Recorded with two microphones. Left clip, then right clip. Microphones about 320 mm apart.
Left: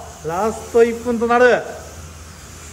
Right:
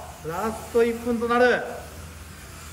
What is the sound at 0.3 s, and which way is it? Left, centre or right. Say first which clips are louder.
A man's voice: left 8 dB; centre.